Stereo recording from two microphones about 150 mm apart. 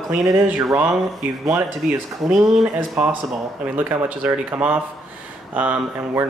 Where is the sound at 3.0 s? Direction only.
5° right (ahead or behind).